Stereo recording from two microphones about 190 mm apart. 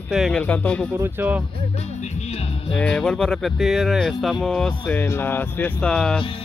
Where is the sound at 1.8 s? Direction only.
35° left (ahead or behind).